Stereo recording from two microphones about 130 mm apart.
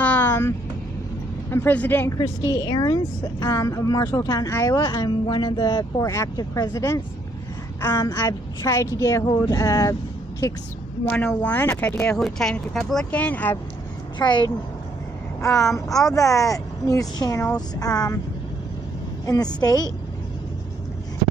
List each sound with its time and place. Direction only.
0.0 s vehicle: 15° left (ahead or behind)
1.5 s speech: 15° left (ahead or behind)
2.1 s speech: 30° left (ahead or behind)
8.0 s speech: 30° left (ahead or behind)
11.1 s speech: 10° left (ahead or behind)
14.1 s a woman's voice: 35° left (ahead or behind)
16.0 s speech: 25° left (ahead or behind)
19.2 s speech: 30° left (ahead or behind)